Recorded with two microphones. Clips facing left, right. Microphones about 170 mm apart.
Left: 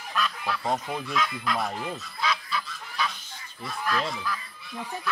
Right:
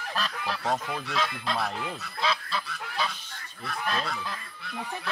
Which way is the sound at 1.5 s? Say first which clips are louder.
Left 2 dB; 30° right (ahead or behind).